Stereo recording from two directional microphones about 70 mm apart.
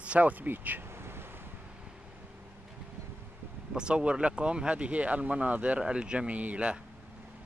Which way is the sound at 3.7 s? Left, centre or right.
Centre.